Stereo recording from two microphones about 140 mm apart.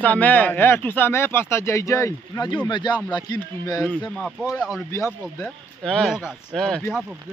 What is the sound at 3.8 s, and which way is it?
Speech, 5° left (ahead or behind).